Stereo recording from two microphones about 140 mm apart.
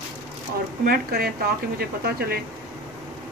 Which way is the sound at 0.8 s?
90° right.